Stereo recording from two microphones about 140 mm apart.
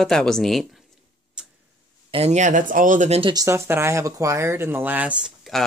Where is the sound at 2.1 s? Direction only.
50° right (ahead or behind).